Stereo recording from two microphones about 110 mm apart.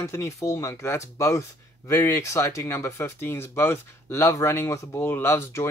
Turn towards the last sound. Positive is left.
turn(degrees=20)  # may be behind; listen again after turning